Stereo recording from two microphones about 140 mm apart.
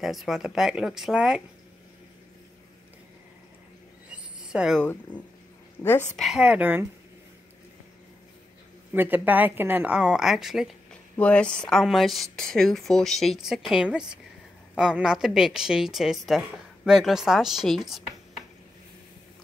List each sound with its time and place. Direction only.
0.0 s a woman's voice: centre (ahead or behind)
4.1 s a sound: 5° right (ahead or behind)
5.8 s a woman's voice: 15° left (ahead or behind)
6.1 s a woman's voice: centre (ahead or behind)
8.9 s a woman's voice: 15° right (ahead or behind)